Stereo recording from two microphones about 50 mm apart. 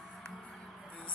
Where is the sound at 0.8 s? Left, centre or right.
Left.